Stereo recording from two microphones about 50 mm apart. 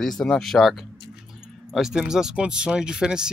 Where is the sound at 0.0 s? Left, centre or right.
Centre.